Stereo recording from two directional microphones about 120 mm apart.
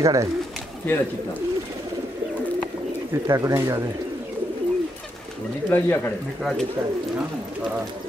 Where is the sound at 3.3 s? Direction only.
25° right (ahead or behind).